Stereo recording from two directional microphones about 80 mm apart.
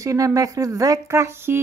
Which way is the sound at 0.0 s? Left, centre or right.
Right.